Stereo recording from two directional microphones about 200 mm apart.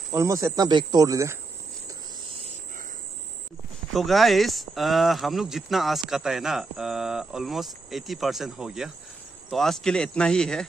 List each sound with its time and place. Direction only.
0.2 s speech: 15° right (ahead or behind)
3.9 s speech: centre (ahead or behind)